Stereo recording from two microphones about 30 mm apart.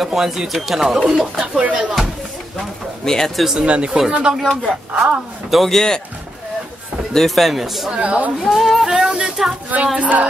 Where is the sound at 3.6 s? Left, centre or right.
Right.